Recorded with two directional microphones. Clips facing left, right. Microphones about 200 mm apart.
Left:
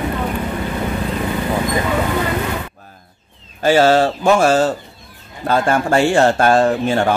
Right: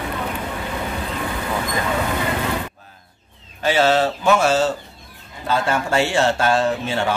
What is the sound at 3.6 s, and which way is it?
Speech, 45° left (ahead or behind).